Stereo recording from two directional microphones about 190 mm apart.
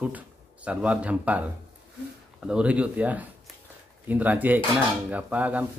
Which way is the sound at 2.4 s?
5° right (ahead or behind).